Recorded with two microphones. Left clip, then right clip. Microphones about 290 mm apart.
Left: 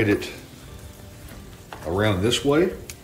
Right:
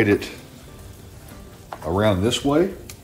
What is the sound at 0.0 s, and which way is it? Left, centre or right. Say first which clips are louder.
Speech: right 3 dB; right.